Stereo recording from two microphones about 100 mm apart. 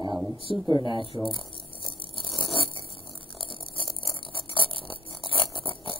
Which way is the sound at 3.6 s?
65° left (ahead or behind).